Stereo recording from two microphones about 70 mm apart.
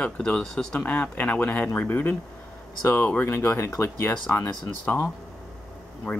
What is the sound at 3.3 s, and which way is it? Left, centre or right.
Speech, left.